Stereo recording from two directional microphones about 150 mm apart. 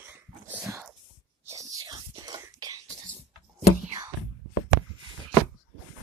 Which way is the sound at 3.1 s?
45° right (ahead or behind).